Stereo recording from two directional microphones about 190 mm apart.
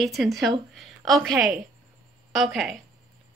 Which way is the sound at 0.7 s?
Centre (ahead or behind).